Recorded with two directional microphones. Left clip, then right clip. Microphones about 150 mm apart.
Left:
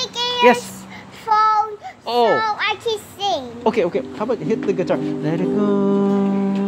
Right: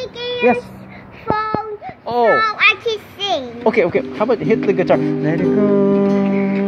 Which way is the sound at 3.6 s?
10° left (ahead or behind).